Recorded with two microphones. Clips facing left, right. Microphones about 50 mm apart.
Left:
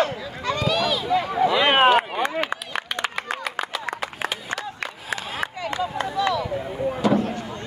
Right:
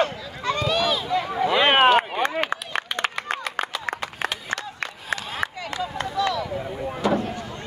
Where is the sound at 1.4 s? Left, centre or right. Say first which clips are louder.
Right 1 dB; right.